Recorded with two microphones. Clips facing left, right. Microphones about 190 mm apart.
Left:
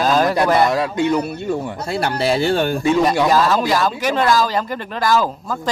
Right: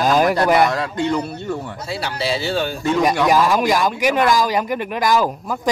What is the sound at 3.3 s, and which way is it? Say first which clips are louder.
Speech: even; 15° right (ahead or behind).